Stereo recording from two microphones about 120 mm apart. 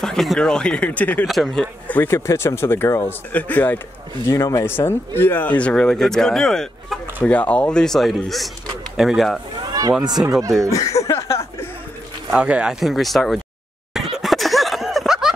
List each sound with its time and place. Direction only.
0.0 s speech: centre (ahead or behind)
1.2 s speech: centre (ahead or behind)
4.3 s speech: 30° left (ahead or behind); by 9.4 s centre (ahead or behind)
9.6 s a sound: 35° right (ahead or behind)
10.7 s speech: 25° left (ahead or behind)
12.3 s speech: 10° right (ahead or behind)
13.9 s laughter: centre (ahead or behind)